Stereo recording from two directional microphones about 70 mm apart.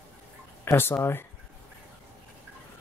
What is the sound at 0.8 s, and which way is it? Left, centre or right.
Speech, left.